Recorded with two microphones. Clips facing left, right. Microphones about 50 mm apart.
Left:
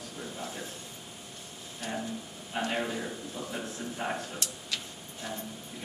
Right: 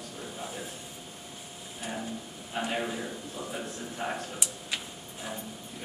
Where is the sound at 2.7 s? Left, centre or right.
Centre.